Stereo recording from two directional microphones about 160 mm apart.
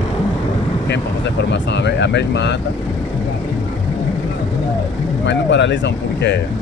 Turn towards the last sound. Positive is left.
turn(degrees=90)